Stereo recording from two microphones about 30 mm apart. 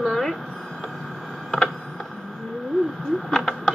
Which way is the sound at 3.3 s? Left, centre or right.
Centre.